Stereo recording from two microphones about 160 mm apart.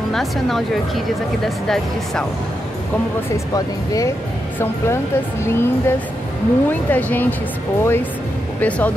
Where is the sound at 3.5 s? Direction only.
20° left (ahead or behind).